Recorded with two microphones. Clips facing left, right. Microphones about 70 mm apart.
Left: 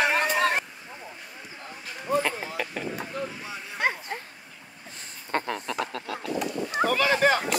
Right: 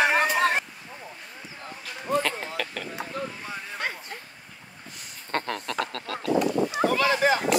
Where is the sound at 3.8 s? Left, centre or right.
Left.